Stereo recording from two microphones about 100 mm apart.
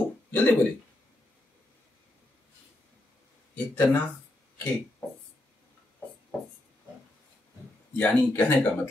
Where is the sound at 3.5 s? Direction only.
15° left (ahead or behind).